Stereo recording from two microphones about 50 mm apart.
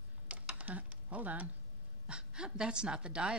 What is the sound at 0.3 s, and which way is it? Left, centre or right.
Typing, right.